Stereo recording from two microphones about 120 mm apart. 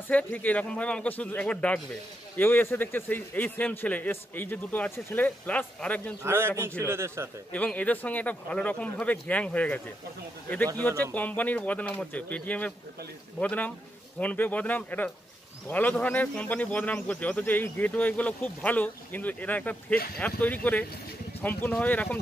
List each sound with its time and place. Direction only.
0.1 s speech: 15° left (ahead or behind)
6.2 s a man's voice: 20° right (ahead or behind)
7.5 s speech: 10° left (ahead or behind)
10.8 s speech: 20° left (ahead or behind)